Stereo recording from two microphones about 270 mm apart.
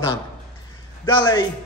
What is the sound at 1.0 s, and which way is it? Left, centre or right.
Speech, centre.